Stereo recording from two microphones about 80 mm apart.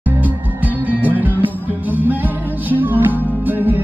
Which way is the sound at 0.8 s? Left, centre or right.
Right.